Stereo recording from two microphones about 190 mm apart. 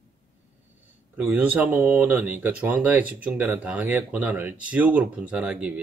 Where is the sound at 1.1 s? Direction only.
10° right (ahead or behind).